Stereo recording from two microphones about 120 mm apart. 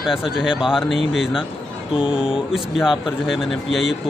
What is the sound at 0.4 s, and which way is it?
Speech, 5° right (ahead or behind).